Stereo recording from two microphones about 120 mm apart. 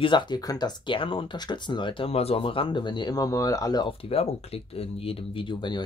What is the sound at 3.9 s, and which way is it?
Speech, 55° left (ahead or behind).